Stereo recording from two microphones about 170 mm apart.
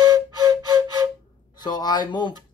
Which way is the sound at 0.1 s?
25° right (ahead or behind).